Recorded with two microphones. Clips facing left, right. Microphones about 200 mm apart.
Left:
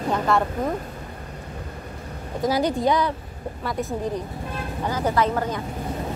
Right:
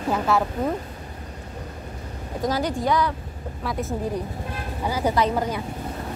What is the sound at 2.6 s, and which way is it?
Speech, 25° left (ahead or behind).